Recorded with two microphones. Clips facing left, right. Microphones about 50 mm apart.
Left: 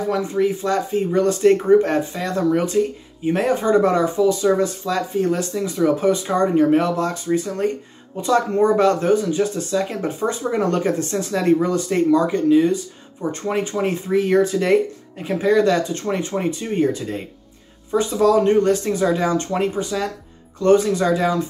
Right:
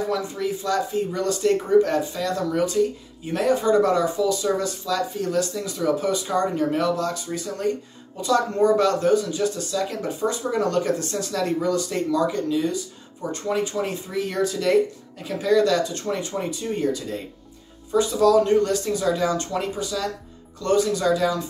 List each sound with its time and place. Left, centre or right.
0.1 s speech: left